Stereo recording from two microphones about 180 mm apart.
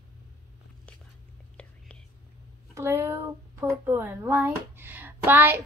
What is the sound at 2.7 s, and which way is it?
Speech, 15° right (ahead or behind).